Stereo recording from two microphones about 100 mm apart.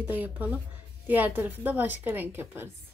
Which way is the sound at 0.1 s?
15° right (ahead or behind).